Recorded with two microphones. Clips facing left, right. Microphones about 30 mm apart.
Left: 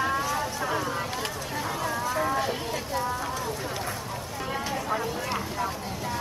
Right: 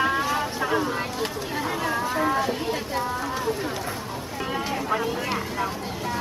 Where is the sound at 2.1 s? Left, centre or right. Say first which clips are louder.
Right 3 dB; right.